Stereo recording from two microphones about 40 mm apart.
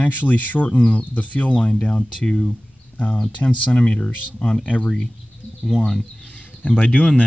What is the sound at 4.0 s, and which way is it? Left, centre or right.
Speech, left.